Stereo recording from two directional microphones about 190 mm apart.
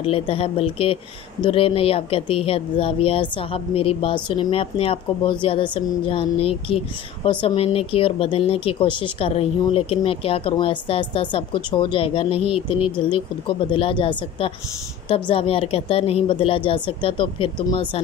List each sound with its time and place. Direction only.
0.0 s speech: 30° left (ahead or behind)